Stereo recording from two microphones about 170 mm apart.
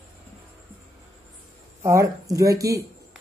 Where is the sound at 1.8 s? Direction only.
20° right (ahead or behind).